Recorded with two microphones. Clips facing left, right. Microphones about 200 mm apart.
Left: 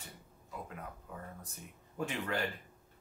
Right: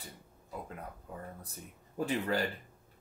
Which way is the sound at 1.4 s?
35° right (ahead or behind).